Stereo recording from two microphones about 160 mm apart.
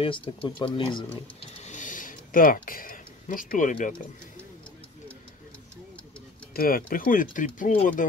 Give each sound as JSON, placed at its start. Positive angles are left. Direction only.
{"t": 0.0, "sound": "speech", "side_deg": 35}
{"t": 1.6, "sound": "a sound", "side_deg": 50}
{"t": 6.5, "sound": "speech", "side_deg": 65}